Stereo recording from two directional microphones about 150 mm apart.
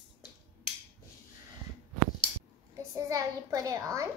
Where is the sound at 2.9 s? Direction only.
20° right (ahead or behind).